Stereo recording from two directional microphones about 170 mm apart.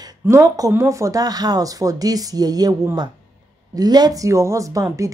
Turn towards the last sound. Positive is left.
turn(degrees=-20)  # may be behind; listen again after turning